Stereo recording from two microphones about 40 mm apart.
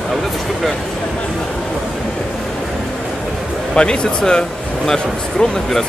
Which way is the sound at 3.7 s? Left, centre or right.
Left.